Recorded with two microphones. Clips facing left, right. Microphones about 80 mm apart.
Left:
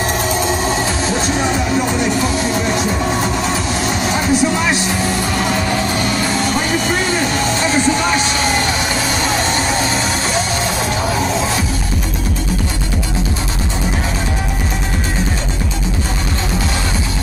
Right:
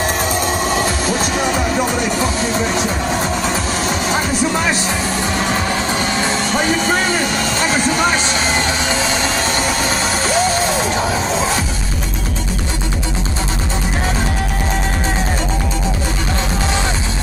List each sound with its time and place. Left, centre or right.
4.1 s speech: right